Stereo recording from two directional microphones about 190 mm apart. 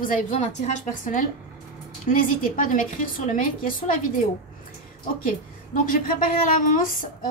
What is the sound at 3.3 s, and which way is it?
Speech, 45° left (ahead or behind).